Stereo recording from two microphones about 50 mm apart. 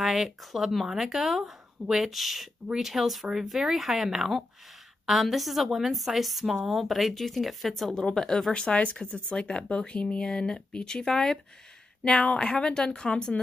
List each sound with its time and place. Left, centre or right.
0.0 s a woman's voice: centre
7.9 s speech: centre
8.5 s speech: left